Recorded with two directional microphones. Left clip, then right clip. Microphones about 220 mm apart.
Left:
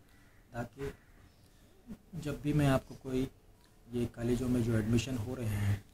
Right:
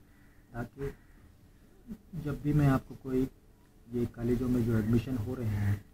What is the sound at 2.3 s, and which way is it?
Speech, 15° left (ahead or behind).